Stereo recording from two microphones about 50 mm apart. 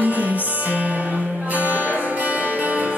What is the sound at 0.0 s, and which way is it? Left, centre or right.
Music, right.